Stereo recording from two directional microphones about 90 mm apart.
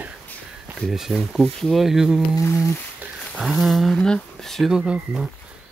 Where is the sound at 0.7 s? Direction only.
5° right (ahead or behind).